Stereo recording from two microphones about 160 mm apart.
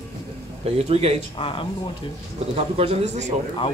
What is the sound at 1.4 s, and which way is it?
Speech, 35° left (ahead or behind).